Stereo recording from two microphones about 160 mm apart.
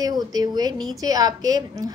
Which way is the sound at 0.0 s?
25° right (ahead or behind).